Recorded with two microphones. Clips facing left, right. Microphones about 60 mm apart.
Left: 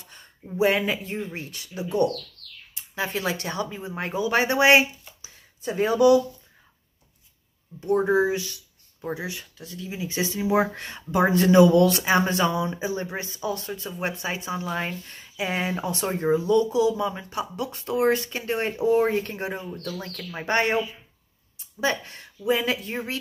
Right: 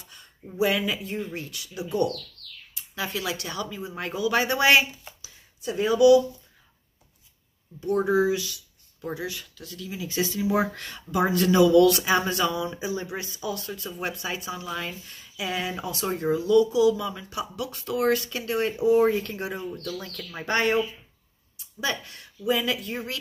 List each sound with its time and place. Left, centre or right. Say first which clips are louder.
0.1 s speech: left 6 dB; left
5.2 s speech: left 2 dB; left
7.8 s speech: left 1 dB; left